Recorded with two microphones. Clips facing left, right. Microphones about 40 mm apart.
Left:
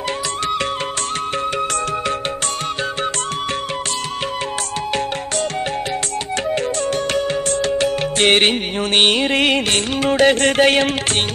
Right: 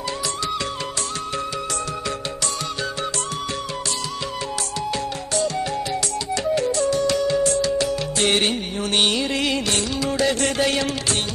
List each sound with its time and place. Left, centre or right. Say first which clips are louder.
7.1 s music: even; left